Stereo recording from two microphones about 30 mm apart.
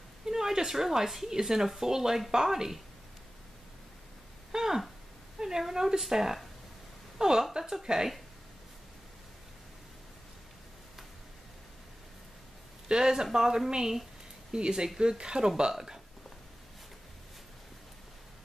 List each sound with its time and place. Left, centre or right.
0.2 s speech: centre
4.5 s a sound: centre
5.6 s speech: centre
12.8 s speech: right